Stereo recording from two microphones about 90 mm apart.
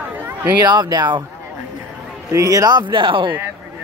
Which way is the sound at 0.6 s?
50° right (ahead or behind).